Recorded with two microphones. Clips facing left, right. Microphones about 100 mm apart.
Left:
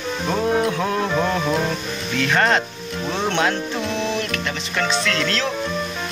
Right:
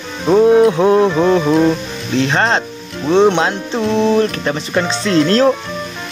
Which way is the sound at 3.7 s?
35° right (ahead or behind).